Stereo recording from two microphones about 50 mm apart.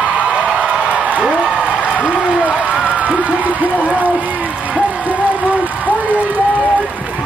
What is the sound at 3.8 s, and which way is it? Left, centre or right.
Speech, right.